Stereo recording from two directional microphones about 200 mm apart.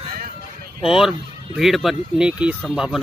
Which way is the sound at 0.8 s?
Centre (ahead or behind).